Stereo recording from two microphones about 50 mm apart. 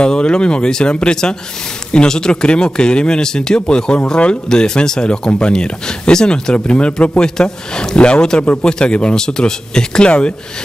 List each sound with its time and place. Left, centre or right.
0.0 s a man's voice: centre